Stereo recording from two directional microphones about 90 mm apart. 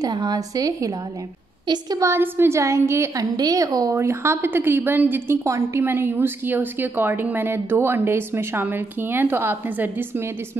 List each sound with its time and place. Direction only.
0.0 s a woman's voice: 45° right (ahead or behind)
2.0 s a woman's voice: 25° right (ahead or behind)
3.3 s a woman's voice: 40° right (ahead or behind); by 10.3 s 25° right (ahead or behind)